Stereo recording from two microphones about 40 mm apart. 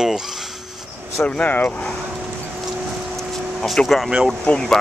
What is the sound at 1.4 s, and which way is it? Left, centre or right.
Speech, left.